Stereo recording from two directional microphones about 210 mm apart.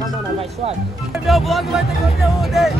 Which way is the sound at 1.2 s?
Centre (ahead or behind).